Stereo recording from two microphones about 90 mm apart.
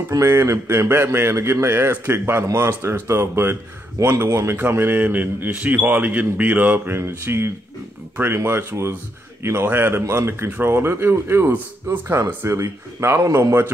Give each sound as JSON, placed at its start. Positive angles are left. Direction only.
{"t": 0.1, "sound": "speech", "side_deg": -30}